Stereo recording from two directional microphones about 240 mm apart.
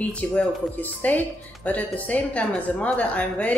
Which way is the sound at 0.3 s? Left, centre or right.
Centre.